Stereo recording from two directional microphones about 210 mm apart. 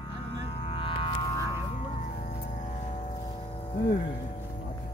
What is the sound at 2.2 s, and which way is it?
Music, 35° left (ahead or behind).